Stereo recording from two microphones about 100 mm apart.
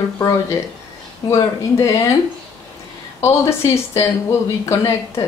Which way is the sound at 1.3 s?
30° left (ahead or behind).